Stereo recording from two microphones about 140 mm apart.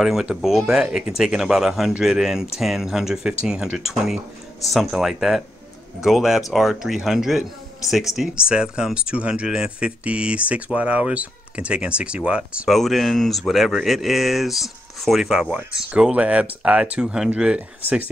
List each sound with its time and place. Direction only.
0.0 s speech: 5° right (ahead or behind)